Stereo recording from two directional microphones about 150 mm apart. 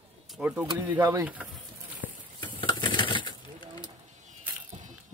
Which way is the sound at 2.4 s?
30° left (ahead or behind).